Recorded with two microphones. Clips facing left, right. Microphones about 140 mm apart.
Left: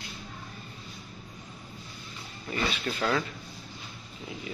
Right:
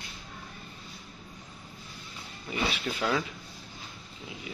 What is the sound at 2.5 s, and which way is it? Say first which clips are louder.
Speech: left 1 dB; 10° right (ahead or behind).